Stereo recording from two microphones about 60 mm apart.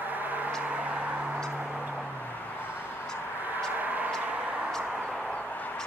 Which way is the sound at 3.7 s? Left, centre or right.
Right.